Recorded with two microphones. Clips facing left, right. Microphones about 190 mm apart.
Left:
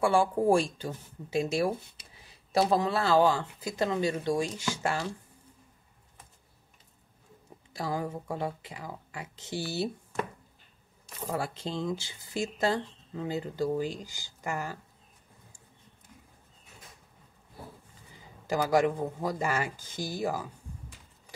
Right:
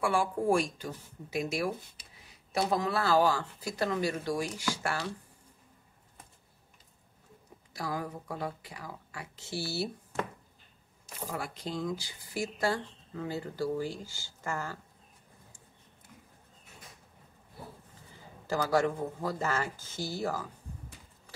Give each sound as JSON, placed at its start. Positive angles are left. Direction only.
{"t": 0.0, "sound": "speech", "side_deg": 30}
{"t": 7.7, "sound": "speech", "side_deg": 25}
{"t": 11.2, "sound": "speech", "side_deg": 30}
{"t": 18.5, "sound": "speech", "side_deg": 15}